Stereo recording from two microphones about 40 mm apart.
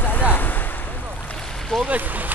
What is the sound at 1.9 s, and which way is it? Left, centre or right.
Speech, right.